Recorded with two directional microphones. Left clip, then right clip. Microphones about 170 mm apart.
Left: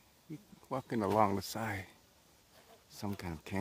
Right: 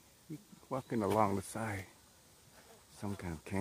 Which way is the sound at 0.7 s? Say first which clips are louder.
Left 1 dB; 15° left (ahead or behind).